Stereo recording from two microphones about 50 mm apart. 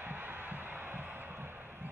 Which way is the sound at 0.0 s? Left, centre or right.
Right.